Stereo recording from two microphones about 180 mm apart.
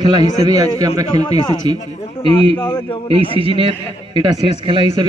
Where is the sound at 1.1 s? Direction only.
35° left (ahead or behind).